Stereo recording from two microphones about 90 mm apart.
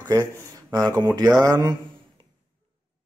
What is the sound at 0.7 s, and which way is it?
Speech, 50° right (ahead or behind).